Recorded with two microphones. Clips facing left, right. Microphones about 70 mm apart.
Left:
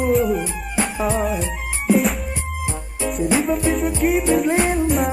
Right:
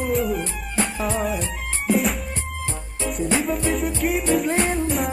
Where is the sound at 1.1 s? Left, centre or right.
Centre.